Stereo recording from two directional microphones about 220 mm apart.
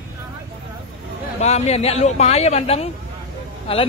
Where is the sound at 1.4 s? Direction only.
30° left (ahead or behind).